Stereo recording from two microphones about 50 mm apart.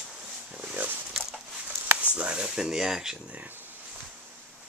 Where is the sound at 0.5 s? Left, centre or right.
Right.